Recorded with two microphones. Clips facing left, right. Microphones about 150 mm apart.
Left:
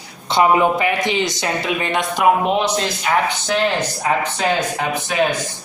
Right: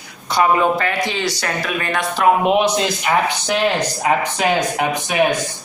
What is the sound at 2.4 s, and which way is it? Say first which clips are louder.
Speech: right 3 dB; 15° right (ahead or behind).